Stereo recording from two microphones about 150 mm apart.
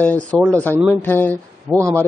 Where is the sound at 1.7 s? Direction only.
15° right (ahead or behind).